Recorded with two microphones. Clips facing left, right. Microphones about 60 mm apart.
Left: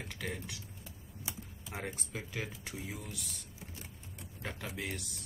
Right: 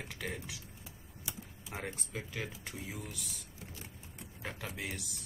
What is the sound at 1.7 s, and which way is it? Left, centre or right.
Speech, centre.